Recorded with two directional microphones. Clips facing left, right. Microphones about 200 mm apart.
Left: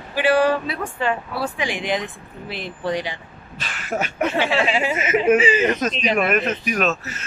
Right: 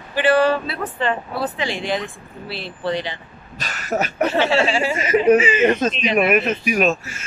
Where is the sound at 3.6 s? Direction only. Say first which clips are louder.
Right 3 dB; 40° right (ahead or behind).